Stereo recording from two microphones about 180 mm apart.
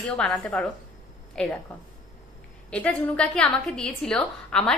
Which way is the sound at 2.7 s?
5° left (ahead or behind).